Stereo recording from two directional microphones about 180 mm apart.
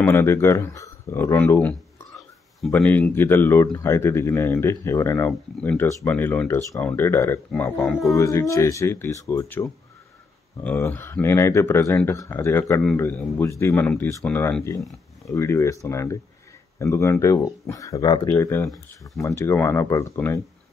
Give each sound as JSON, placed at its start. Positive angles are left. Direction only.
{"t": 0.0, "sound": "speech", "side_deg": 15}
{"t": 8.2, "sound": "speech", "side_deg": 15}
{"t": 14.8, "sound": "speech", "side_deg": 0}
{"t": 15.3, "sound": "speech", "side_deg": 15}